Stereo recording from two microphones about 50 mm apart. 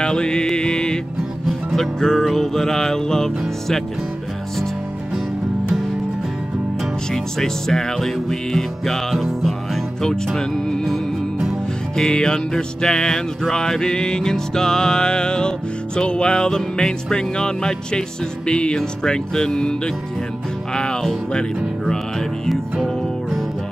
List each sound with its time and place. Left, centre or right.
0.0 s music: centre
7.3 s music: centre
10.0 s speech: centre
12.0 s music: centre
18.5 s speech: centre
19.0 s music: centre
20.7 s music: centre